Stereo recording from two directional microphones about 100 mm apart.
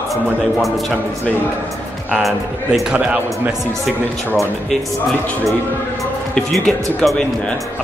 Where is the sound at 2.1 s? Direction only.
5° right (ahead or behind).